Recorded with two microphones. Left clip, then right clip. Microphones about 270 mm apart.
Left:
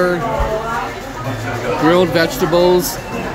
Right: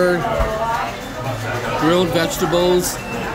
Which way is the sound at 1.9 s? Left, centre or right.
Centre.